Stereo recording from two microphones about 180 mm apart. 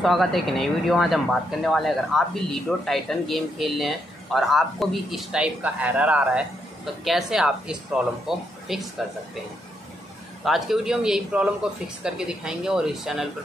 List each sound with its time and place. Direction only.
0.0 s speech: centre (ahead or behind)
10.4 s speech: centre (ahead or behind)